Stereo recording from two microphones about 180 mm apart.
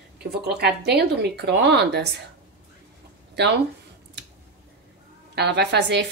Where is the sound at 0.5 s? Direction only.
65° right (ahead or behind).